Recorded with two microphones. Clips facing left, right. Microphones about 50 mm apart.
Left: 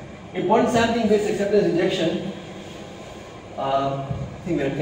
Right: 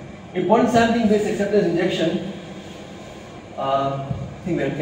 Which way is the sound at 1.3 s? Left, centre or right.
Right.